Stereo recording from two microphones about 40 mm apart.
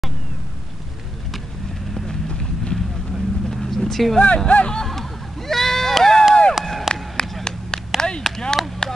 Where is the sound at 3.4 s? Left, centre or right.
Centre.